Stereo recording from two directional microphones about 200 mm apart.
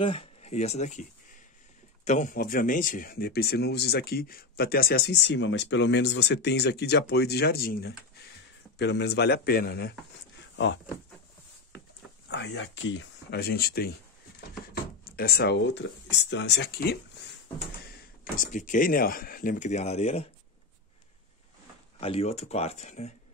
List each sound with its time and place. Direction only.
0.0 s speech: 25° left (ahead or behind)
2.0 s speech: 40° left (ahead or behind)
10.5 s a sound: 65° left (ahead or behind)
12.3 s speech: 60° left (ahead or behind)
18.4 s speech: 40° left (ahead or behind)
22.0 s speech: 30° left (ahead or behind)